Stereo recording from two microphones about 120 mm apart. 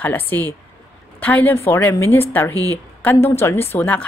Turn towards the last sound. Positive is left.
turn(degrees=15)  # may be behind; listen again after turning